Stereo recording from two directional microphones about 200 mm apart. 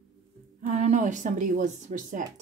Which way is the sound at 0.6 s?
35° right (ahead or behind).